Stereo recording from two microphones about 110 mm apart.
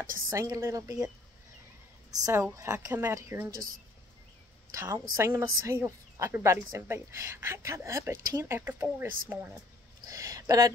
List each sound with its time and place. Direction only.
0.3 s speech: 30° right (ahead or behind)
2.0 s a woman's voice: 30° right (ahead or behind)
4.7 s a woman's voice: 30° right (ahead or behind)
10.0 s speech: 35° right (ahead or behind)